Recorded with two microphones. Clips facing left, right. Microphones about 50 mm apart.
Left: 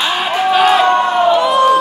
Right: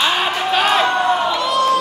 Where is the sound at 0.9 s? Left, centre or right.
Left.